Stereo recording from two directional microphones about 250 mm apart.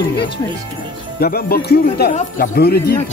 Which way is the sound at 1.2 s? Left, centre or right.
Left.